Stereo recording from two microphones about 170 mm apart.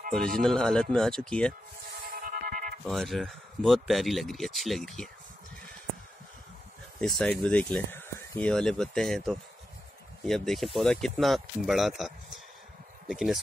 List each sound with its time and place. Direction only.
0.4 s speech: 5° left (ahead or behind)
2.1 s music: 55° right (ahead or behind)
2.9 s speech: centre (ahead or behind)
7.0 s speech: 5° left (ahead or behind)